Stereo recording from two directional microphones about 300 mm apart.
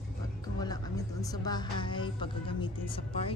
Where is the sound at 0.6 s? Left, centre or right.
Centre.